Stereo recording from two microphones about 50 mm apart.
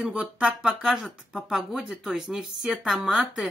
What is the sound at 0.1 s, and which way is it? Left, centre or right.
Speech, right.